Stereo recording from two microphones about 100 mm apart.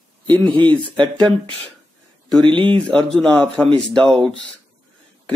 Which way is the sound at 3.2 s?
5° left (ahead or behind).